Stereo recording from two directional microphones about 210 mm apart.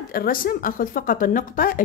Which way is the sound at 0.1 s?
45° left (ahead or behind).